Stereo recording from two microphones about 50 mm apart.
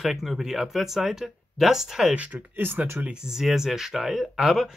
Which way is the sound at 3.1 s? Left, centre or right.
Centre.